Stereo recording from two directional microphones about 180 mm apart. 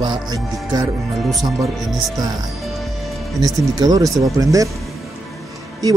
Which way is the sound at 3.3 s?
20° right (ahead or behind).